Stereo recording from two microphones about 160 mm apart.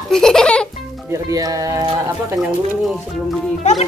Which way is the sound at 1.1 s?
20° right (ahead or behind).